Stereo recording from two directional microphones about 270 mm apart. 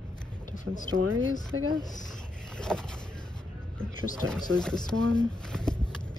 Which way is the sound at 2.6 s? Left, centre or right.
Centre.